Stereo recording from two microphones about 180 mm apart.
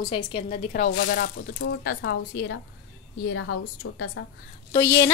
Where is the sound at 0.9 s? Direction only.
60° left (ahead or behind).